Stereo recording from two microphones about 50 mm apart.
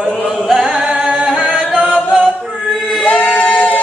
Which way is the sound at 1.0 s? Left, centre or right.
Centre.